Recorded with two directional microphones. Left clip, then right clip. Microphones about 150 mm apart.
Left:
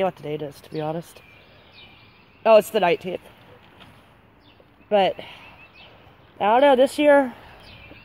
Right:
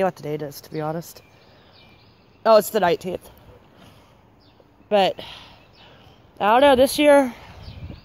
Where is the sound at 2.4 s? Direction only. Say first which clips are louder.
Even; centre (ahead or behind).